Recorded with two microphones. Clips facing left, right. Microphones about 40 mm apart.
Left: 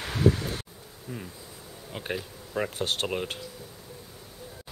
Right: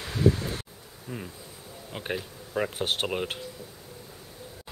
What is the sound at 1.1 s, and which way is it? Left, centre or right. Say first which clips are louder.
Speech: right 1 dB; centre.